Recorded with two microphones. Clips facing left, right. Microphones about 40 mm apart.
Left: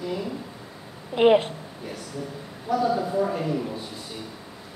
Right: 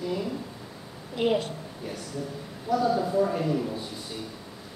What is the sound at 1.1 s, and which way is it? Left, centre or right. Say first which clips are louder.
Speech: left 8 dB; left.